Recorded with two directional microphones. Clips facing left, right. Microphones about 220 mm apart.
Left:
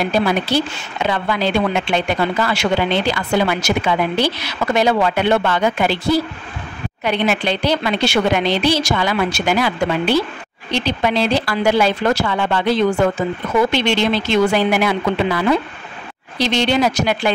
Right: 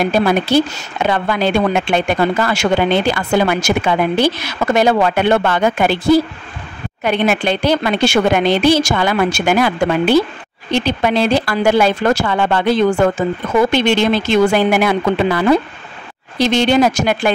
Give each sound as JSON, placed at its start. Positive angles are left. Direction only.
{"t": 0.0, "sound": "a woman's voice", "side_deg": -50}